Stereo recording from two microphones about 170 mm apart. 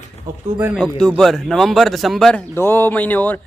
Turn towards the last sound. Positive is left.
turn(degrees=10)  # may be behind; listen again after turning